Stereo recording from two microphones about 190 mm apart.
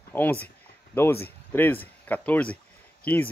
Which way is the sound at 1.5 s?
10° left (ahead or behind).